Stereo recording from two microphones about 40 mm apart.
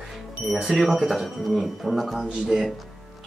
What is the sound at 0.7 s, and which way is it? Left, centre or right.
Speech, centre.